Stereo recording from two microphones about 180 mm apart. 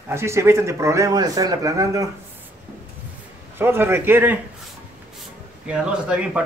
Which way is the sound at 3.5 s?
10° right (ahead or behind).